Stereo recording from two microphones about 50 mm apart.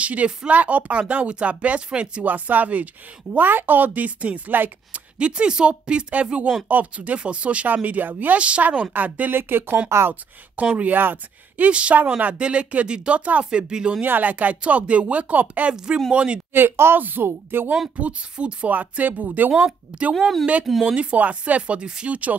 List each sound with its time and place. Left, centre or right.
0.0 s speech: right
2.2 s a woman's voice: right
9.4 s speech: right
10.5 s speech: right
14.0 s speech: right
15.7 s speech: centre
16.5 s speech: right
17.0 s a woman's voice: right
18.0 s speech: right
18.7 s a woman's voice: right
20.2 s a woman's voice: centre
20.8 s speech: right